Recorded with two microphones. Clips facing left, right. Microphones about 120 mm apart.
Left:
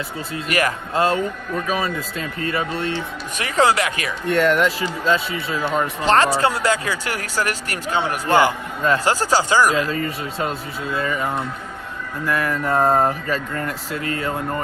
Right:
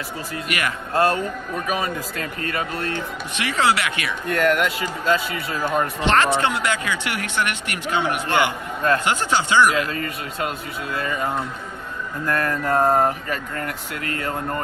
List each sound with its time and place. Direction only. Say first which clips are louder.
0.3 s speech: left 5 dB; 35° left (ahead or behind)
0.9 s speech: even; 20° left (ahead or behind)
12.3 s a sound: left 1 dB; 10° left (ahead or behind)
12.6 s speech: left 1 dB; 25° left (ahead or behind)